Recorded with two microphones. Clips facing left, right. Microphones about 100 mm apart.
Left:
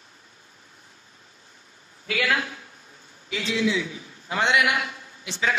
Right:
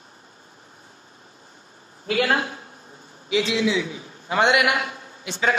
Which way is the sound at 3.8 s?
45° right (ahead or behind).